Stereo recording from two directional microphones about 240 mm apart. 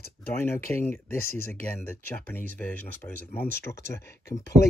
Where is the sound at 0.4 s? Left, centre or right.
Centre.